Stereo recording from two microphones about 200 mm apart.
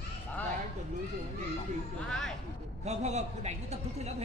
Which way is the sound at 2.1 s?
5° left (ahead or behind).